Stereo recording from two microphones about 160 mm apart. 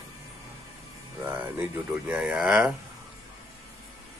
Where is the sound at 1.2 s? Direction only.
10° right (ahead or behind).